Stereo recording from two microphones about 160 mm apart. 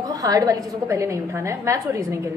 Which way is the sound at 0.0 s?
25° right (ahead or behind).